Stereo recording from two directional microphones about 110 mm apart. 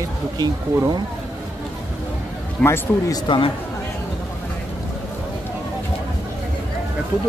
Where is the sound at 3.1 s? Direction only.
45° left (ahead or behind).